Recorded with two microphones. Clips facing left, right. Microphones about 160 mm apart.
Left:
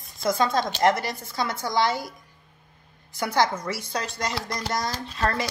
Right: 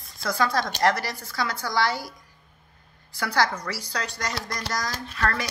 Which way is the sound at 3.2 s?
20° left (ahead or behind).